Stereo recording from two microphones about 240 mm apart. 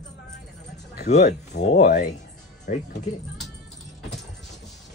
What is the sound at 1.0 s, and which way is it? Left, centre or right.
Speech, left.